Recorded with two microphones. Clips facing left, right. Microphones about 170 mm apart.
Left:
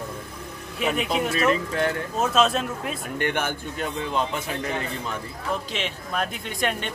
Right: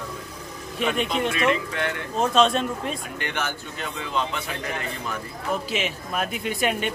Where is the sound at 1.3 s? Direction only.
40° left (ahead or behind).